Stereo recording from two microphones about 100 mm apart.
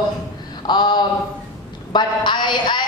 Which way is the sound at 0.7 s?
45° left (ahead or behind).